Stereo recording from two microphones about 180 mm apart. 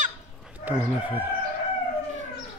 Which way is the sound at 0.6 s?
10° right (ahead or behind).